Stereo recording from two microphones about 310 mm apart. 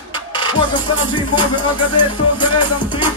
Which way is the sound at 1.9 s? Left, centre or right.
Left.